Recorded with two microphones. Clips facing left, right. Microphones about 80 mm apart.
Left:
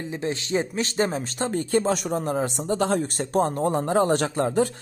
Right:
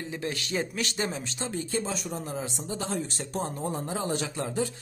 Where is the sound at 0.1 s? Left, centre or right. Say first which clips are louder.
Left 7 dB; left.